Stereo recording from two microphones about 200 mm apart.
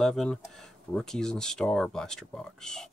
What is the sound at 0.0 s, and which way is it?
Speech, centre (ahead or behind).